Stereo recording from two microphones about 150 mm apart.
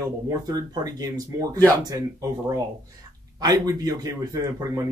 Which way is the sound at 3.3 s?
25° right (ahead or behind).